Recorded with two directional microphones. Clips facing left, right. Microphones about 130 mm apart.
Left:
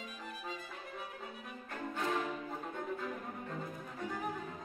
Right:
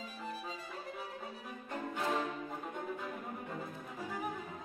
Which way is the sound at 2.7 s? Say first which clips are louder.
Left 1 dB; 10° right (ahead or behind).